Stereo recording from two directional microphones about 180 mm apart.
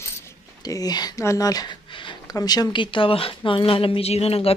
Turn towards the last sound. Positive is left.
turn(degrees=35)  # may be behind; listen again after turning